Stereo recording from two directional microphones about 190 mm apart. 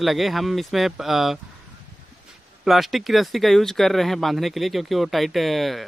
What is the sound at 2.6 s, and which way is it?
Speech, centre (ahead or behind).